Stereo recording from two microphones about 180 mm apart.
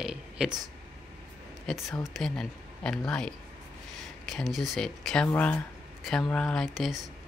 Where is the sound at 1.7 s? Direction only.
Centre (ahead or behind).